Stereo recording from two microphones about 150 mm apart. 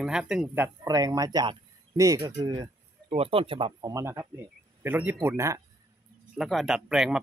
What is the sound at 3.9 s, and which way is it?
Speech, 20° right (ahead or behind).